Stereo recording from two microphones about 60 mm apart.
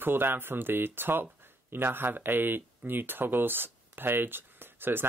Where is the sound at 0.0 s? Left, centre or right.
Right.